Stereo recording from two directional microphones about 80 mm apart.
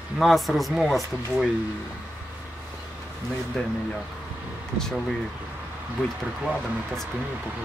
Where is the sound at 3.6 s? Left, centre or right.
Centre.